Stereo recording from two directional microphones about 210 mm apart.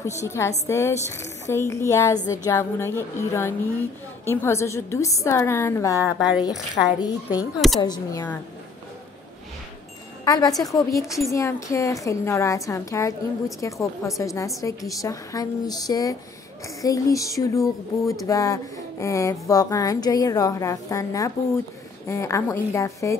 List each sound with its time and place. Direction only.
0.0 s speech: 15° left (ahead or behind)
6.0 s speech: 5° right (ahead or behind)
7.0 s speech: 20° left (ahead or behind)
10.2 s speech: 15° left (ahead or behind)